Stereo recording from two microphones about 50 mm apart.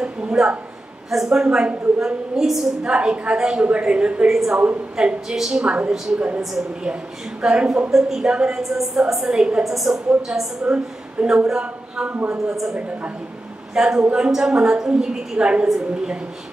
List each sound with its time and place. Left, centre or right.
0.0 s a sound: centre
1.1 s a woman's voice: centre
2.8 s a woman's voice: centre
4.3 s a woman's voice: centre
7.4 s a woman's voice: centre
8.6 s a woman's voice: centre
10.6 s speech: right
12.1 s a man's voice: right
12.4 s a woman's voice: centre
13.7 s a woman's voice: centre